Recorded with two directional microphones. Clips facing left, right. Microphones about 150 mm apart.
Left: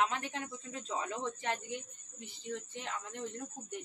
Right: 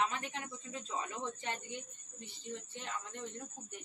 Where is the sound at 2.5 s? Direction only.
90° left.